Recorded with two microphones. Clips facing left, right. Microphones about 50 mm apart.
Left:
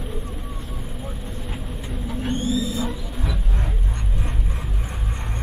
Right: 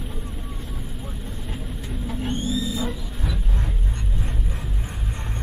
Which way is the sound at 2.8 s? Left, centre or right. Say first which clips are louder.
Left 1 dB; centre.